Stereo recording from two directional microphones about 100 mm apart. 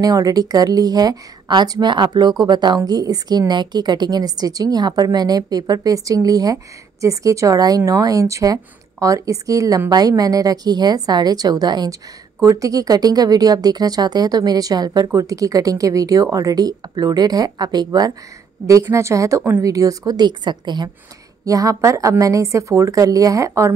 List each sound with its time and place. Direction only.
0.0 s speech: 40° right (ahead or behind)
21.5 s speech: 35° right (ahead or behind)